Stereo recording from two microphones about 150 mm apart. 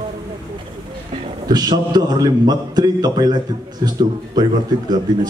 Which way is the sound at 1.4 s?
25° right (ahead or behind).